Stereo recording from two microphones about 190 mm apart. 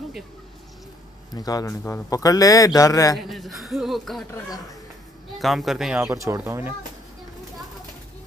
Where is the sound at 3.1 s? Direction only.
Centre (ahead or behind).